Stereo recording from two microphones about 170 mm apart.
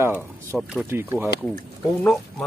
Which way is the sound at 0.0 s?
15° right (ahead or behind).